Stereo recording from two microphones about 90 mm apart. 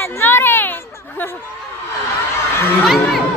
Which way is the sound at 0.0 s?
25° left (ahead or behind).